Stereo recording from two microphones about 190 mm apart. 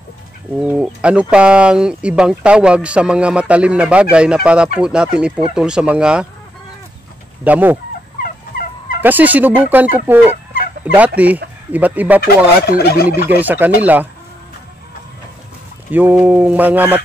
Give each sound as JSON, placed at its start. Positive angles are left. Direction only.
{"t": 0.6, "sound": "speech", "side_deg": -5}
{"t": 7.4, "sound": "speech", "side_deg": -10}
{"t": 9.0, "sound": "speech", "side_deg": -10}
{"t": 12.6, "sound": "gobble", "side_deg": 55}
{"t": 13.1, "sound": "speech", "side_deg": -10}
{"t": 15.9, "sound": "speech", "side_deg": -10}